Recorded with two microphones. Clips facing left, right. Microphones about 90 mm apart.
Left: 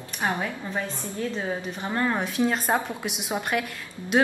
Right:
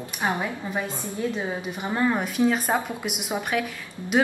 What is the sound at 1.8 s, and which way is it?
A woman's voice, 5° right (ahead or behind).